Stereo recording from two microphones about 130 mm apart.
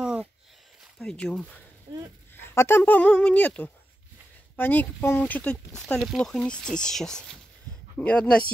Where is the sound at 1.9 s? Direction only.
35° right (ahead or behind).